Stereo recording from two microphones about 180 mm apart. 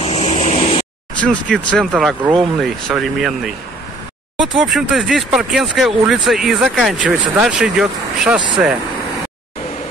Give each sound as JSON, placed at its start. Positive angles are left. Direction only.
{"t": 0.0, "sound": "vehicle", "side_deg": 35}
{"t": 1.2, "sound": "speech", "side_deg": 5}